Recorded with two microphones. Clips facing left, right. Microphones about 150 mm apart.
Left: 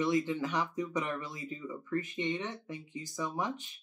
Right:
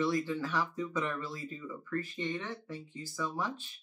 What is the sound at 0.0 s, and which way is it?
Speech, 20° left (ahead or behind).